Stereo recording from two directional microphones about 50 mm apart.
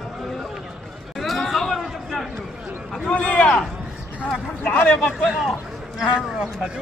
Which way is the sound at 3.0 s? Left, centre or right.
Left.